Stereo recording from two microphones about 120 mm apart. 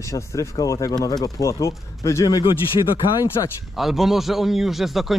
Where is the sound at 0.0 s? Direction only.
25° left (ahead or behind).